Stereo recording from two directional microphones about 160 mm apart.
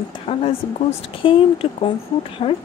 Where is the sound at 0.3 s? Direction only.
35° left (ahead or behind).